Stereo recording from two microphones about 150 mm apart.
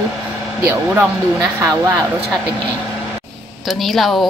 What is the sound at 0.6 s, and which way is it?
Speech, 15° right (ahead or behind).